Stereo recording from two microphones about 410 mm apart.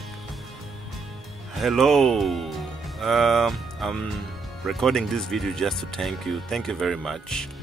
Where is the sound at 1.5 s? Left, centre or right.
Centre.